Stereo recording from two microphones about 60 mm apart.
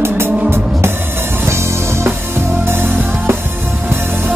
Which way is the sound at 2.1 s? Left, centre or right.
Right.